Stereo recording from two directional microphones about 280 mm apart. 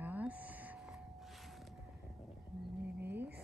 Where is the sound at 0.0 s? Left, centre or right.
Centre.